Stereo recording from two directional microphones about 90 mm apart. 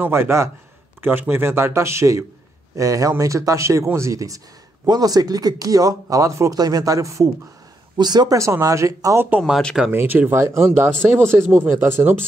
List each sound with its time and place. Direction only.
0.0 s speech: 25° right (ahead or behind)
8.0 s speech: 50° right (ahead or behind)
8.4 s speech: 35° right (ahead or behind)
9.8 s speech: 20° right (ahead or behind)